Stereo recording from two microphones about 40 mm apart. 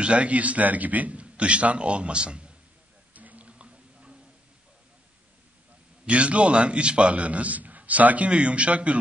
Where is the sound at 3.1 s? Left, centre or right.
Right.